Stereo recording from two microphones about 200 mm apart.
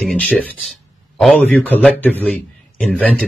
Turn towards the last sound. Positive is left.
turn(degrees=5)  # may be behind; listen again after turning